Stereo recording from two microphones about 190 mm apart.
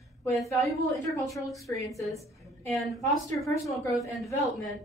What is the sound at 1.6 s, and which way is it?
Speech, 15° left (ahead or behind).